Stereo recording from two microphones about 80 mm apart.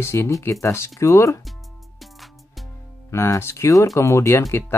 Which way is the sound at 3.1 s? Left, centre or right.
Left.